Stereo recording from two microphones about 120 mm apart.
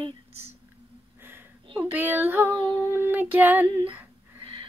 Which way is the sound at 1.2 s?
20° right (ahead or behind).